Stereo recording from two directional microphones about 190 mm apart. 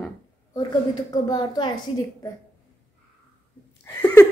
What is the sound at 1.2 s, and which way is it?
Speech, 20° left (ahead or behind).